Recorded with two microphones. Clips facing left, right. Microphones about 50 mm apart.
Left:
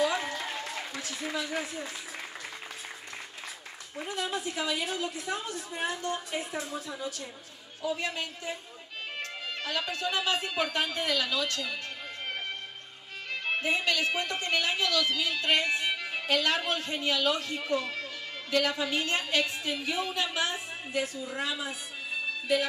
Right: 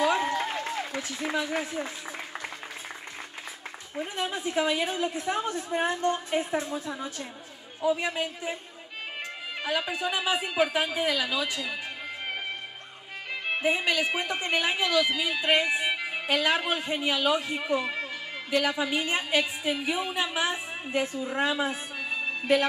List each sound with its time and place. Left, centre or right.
0.0 s applause: right
0.9 s a man's voice: right
3.9 s a woman's voice: right
7.8 s a man's voice: centre
13.3 s a woman's voice: centre; by 22.7 s right